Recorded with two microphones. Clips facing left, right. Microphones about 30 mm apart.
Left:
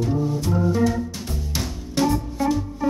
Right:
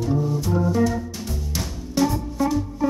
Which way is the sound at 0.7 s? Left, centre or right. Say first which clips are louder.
Even; centre.